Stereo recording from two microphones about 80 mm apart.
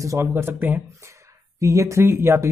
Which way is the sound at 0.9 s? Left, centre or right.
Right.